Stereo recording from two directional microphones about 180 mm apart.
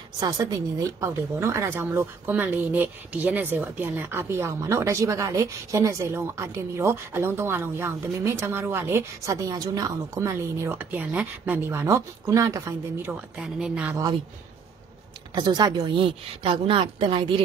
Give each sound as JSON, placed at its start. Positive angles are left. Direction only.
{"t": 0.2, "sound": "speech", "side_deg": -20}
{"t": 13.4, "sound": "speech", "side_deg": -5}
{"t": 15.3, "sound": "a woman's voice", "side_deg": -25}